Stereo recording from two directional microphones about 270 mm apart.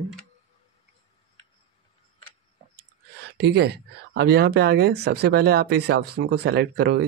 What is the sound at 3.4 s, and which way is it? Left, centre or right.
Speech, right.